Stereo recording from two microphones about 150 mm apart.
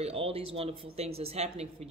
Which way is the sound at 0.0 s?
40° right (ahead or behind).